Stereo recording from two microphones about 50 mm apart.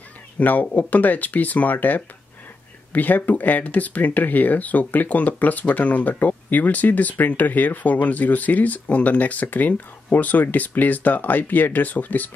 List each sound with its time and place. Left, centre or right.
0.4 s speech: left